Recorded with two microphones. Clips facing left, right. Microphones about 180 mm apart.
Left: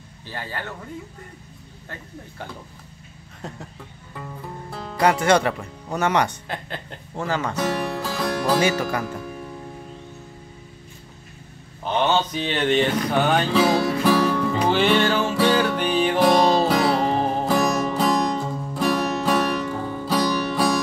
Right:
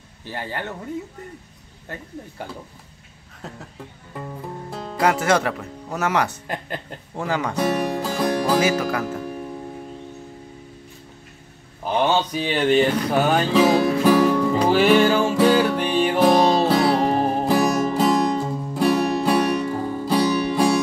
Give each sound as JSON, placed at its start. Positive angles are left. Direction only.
{"t": 0.3, "sound": "speech", "side_deg": -15}
{"t": 3.4, "sound": "speech", "side_deg": 0}
{"t": 4.1, "sound": "music", "side_deg": -15}
{"t": 4.9, "sound": "speech", "side_deg": -5}
{"t": 11.8, "sound": "music", "side_deg": -5}